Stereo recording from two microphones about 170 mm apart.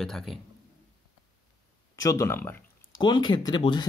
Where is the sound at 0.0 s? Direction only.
Centre (ahead or behind).